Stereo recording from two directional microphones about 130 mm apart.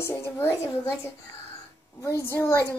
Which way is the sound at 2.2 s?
20° left (ahead or behind).